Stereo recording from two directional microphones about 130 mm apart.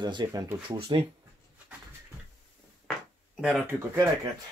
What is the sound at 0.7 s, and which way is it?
Speech, 45° right (ahead or behind).